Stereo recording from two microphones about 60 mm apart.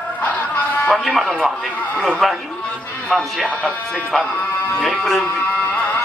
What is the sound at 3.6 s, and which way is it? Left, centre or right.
Speech, centre.